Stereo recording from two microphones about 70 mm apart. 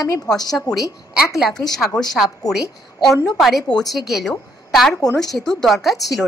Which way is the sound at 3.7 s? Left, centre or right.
Centre.